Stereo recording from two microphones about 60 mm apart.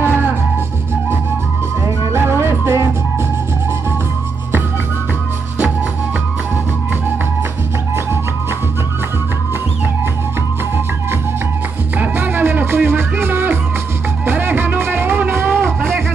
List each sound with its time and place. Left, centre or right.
0.0 s music: right
2.1 s music: right
12.0 s music: right